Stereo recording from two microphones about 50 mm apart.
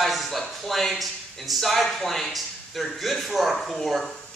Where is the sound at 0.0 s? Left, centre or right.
Centre.